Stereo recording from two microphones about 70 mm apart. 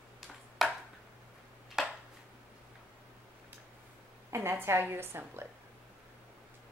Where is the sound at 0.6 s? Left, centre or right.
Centre.